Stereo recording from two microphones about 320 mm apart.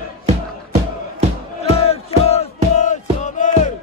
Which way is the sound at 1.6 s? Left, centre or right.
Centre.